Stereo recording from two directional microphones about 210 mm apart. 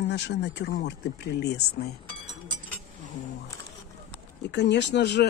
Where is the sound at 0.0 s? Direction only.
55° left (ahead or behind).